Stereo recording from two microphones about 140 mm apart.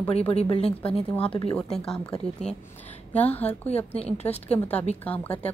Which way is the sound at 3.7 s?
45° left (ahead or behind).